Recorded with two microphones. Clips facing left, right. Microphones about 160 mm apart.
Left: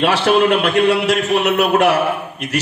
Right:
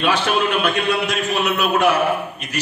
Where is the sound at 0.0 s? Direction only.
70° left (ahead or behind).